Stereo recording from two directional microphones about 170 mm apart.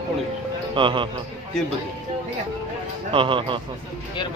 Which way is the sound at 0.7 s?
30° right (ahead or behind).